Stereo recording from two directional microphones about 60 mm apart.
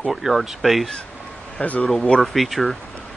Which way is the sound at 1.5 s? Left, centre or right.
Left.